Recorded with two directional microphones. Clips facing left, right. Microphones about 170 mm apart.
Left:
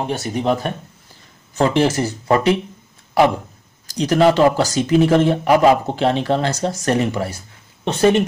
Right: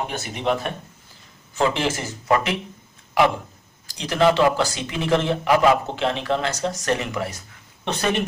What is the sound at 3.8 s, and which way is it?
Speech, 40° left (ahead or behind).